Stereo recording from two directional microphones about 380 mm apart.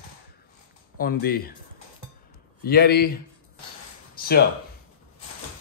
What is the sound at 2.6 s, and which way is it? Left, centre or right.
Speech, left.